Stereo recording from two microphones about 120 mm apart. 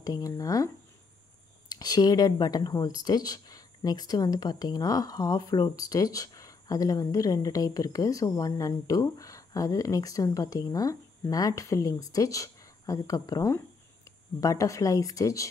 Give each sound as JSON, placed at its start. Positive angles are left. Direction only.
{"t": 0.0, "sound": "speech", "side_deg": 30}
{"t": 1.7, "sound": "speech", "side_deg": 35}